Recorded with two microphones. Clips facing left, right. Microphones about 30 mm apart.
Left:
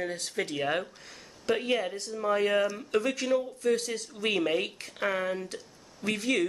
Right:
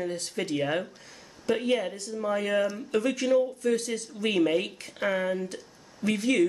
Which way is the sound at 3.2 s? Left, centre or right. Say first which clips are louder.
Right 6 dB; centre.